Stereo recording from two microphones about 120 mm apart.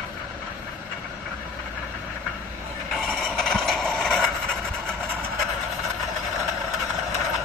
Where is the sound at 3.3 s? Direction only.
Centre (ahead or behind).